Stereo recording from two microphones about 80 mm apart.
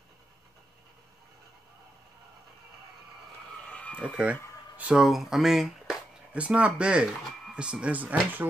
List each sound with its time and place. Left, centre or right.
3.6 s a sound: centre
4.9 s speech: centre
6.3 s speech: centre